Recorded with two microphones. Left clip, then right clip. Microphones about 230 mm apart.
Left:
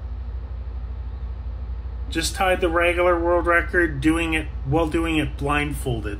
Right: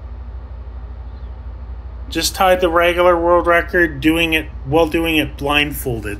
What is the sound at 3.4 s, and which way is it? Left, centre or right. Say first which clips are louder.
Speech: right 5 dB; left.